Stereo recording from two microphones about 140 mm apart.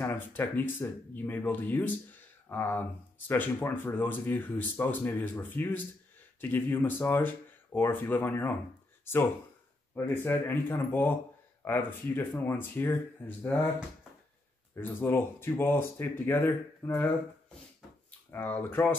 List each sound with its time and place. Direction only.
0.0 s speech: 15° left (ahead or behind)
14.8 s speech: 15° left (ahead or behind)
18.3 s speech: 15° left (ahead or behind)